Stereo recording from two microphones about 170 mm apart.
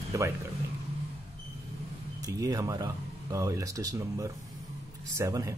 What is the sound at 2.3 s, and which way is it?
Speech, 20° right (ahead or behind).